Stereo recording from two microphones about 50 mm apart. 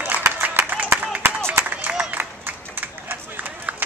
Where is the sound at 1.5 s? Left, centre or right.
Right.